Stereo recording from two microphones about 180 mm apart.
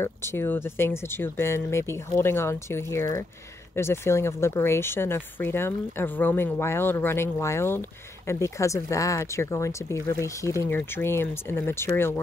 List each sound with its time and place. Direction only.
0.0 s speech: 15° left (ahead or behind)